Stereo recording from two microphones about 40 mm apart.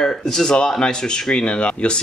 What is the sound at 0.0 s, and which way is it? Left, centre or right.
Speech, centre.